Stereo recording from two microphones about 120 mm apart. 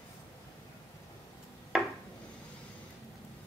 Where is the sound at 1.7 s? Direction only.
5° right (ahead or behind).